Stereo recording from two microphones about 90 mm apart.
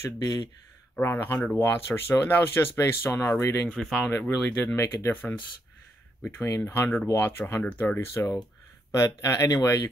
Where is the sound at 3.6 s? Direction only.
10° left (ahead or behind); by 9.8 s 40° left (ahead or behind).